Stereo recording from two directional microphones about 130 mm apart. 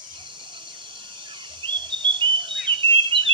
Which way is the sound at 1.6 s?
40° right (ahead or behind).